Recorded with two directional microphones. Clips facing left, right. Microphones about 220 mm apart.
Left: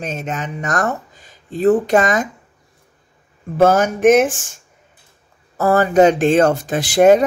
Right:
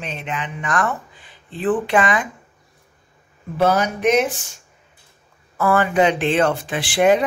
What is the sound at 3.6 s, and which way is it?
Speech, 50° left (ahead or behind).